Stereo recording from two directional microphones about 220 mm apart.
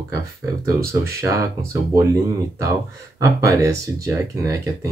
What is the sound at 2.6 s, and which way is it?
Speech, 15° right (ahead or behind).